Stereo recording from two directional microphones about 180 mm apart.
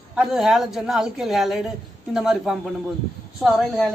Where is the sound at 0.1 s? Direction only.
Centre (ahead or behind).